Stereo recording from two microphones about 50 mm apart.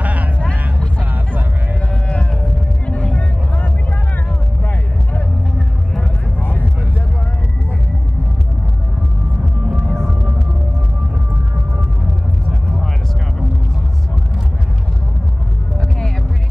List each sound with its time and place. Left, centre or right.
0.0 s vehicle: right
0.4 s vehicle: left
9.7 s music: centre